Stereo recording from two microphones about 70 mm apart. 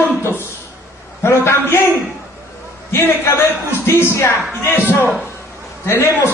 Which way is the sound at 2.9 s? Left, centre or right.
Left.